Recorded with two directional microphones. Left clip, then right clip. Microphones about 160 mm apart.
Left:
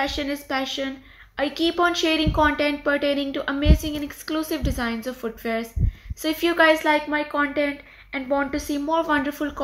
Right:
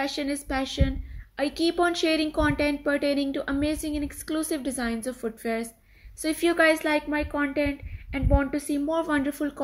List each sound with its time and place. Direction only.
0.0 s a woman's voice: 45° right (ahead or behind)